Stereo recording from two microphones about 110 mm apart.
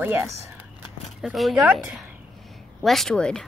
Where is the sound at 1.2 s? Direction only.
Centre (ahead or behind).